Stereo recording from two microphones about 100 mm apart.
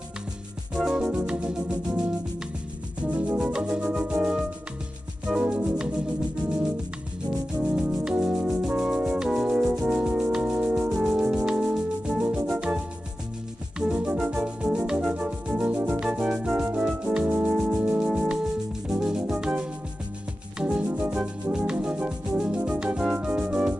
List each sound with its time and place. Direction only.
0.7 s organ: 5° right (ahead or behind)
3.1 s rub: 15° right (ahead or behind)
4.1 s music: 20° right (ahead or behind)
5.4 s music: 10° right (ahead or behind)
7.7 s music: 5° right (ahead or behind)